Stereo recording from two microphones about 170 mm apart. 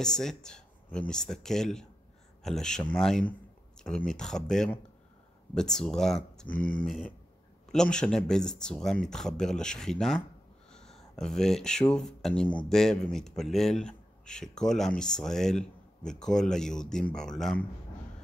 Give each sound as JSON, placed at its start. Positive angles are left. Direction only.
{"t": 0.0, "sound": "speech", "side_deg": 5}
{"t": 6.5, "sound": "speech", "side_deg": 55}
{"t": 6.8, "sound": "speech", "side_deg": 0}